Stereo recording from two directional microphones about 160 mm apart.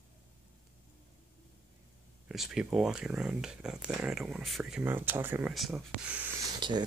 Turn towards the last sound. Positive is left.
turn(degrees=-25)  # may be behind; listen again after turning